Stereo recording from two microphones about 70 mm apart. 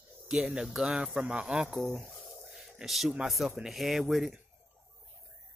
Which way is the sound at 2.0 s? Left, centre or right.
Centre.